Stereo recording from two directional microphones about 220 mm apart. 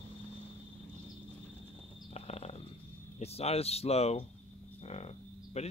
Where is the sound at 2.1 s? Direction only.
30° left (ahead or behind).